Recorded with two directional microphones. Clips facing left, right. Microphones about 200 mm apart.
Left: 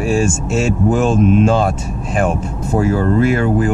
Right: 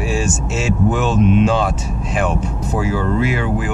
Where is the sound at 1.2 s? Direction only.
45° left (ahead or behind).